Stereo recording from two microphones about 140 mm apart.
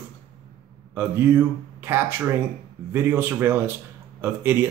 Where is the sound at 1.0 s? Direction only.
15° right (ahead or behind).